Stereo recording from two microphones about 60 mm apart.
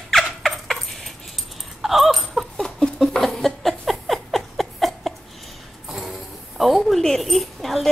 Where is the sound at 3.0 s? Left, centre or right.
Centre.